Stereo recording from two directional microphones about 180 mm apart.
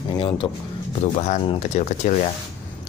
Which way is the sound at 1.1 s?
40° left (ahead or behind).